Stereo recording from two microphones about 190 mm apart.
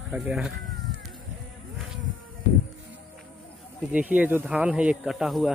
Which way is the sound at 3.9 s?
10° right (ahead or behind).